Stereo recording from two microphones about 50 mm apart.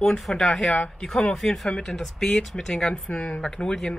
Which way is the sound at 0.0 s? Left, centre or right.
Centre.